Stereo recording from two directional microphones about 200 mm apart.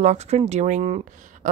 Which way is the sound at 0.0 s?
35° right (ahead or behind).